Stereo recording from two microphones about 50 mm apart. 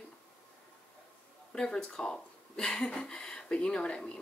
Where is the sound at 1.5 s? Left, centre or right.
Centre.